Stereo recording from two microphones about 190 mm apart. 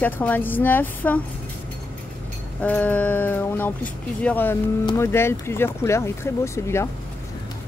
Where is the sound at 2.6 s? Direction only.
10° left (ahead or behind).